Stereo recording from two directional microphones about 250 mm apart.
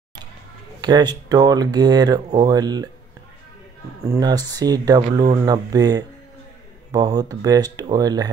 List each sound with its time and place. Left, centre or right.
0.7 s speech: centre
4.0 s speech: centre